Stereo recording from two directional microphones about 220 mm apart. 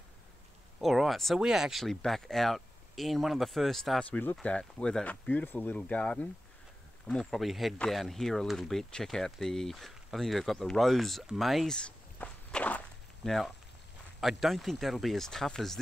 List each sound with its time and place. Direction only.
0.7 s speech: centre (ahead or behind)